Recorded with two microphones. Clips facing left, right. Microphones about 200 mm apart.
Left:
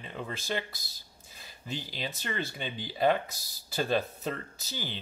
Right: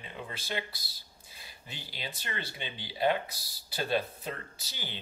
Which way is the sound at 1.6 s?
40° left (ahead or behind).